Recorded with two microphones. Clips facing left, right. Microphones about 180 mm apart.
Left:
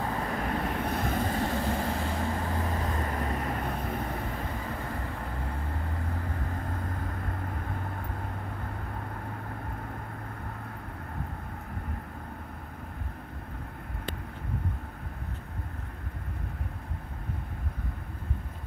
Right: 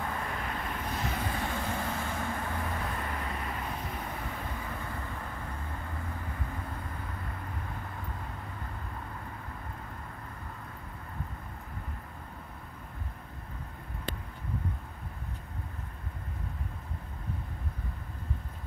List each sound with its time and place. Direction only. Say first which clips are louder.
0.2 s vehicle: left 6 dB; 40° left (ahead or behind)
0.7 s vehicle: left 5 dB; 60° left (ahead or behind)